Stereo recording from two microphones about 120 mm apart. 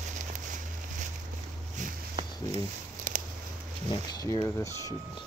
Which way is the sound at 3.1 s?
90° right.